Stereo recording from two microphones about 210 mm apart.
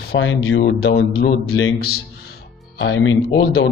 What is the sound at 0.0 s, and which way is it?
Speech, 55° left (ahead or behind).